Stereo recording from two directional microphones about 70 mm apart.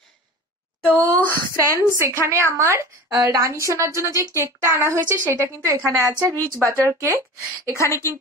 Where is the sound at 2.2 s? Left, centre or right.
Right.